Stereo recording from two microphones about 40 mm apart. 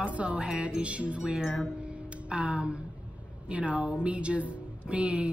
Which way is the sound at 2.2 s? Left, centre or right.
Right.